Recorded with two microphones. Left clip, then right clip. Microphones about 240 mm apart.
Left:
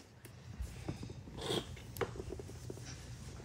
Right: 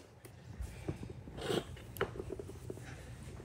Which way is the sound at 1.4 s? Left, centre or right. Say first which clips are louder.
Right 2 dB; centre.